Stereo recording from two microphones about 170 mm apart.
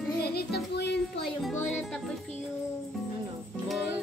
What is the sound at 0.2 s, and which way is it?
Music, 70° left (ahead or behind).